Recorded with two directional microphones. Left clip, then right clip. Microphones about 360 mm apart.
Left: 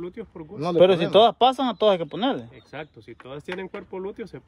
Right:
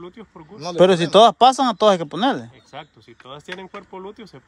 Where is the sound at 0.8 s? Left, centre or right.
Centre.